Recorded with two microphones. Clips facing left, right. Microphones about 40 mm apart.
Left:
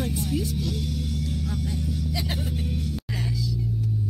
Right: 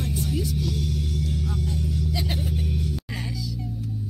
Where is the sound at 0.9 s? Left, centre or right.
Right.